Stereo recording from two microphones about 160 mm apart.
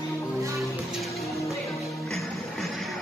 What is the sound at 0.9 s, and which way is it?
Music, centre (ahead or behind).